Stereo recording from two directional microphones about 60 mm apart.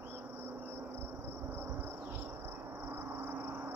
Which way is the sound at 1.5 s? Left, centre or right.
Right.